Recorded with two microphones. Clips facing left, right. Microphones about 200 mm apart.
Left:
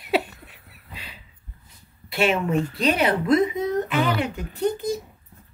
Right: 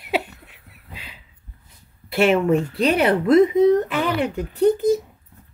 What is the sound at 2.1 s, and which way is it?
A woman's voice, 60° right (ahead or behind).